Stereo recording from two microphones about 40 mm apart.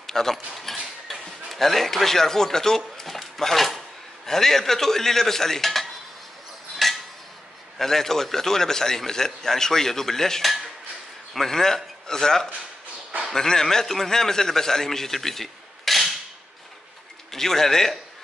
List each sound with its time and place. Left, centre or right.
0.0 s speech: centre
3.0 s a sound: centre
4.3 s a man's voice: centre
6.8 s a sound: centre
7.8 s a man's voice: centre
17.3 s a man's voice: centre